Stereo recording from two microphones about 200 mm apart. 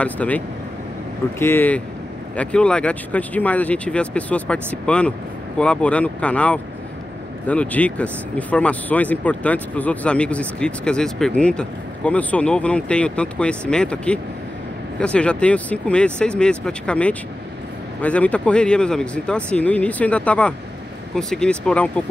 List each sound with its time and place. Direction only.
0.0 s speech: 5° left (ahead or behind)
1.4 s speech: 10° left (ahead or behind)